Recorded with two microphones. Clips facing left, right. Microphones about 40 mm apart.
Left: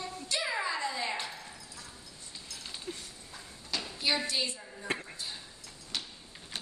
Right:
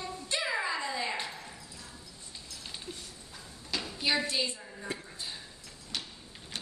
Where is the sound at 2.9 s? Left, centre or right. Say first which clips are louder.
Left 4 dB; left.